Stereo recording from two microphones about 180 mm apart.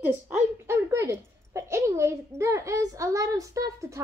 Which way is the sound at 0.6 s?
15° right (ahead or behind).